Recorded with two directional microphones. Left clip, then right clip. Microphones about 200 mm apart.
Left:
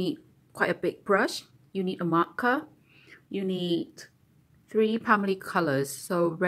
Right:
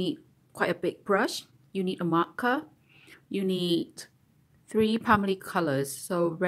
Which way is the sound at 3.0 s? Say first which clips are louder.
Right 1 dB; 20° right (ahead or behind).